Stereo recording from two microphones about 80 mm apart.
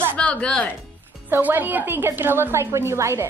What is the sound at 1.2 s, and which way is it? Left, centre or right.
A woman's voice, right.